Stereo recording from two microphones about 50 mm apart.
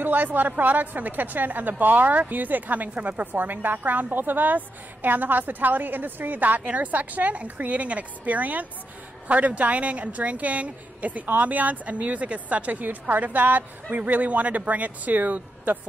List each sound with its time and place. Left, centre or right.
0.0 s a woman's voice: right